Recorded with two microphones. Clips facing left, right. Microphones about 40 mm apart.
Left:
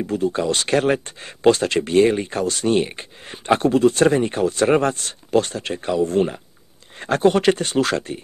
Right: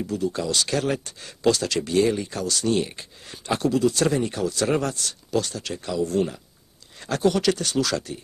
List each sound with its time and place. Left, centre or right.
0.0 s speech: left